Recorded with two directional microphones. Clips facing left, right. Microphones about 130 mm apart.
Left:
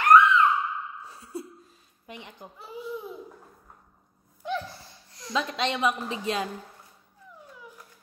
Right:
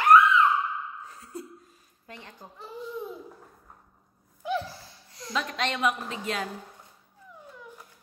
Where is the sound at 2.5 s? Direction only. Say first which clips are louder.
Left 1 dB; 5° left (ahead or behind).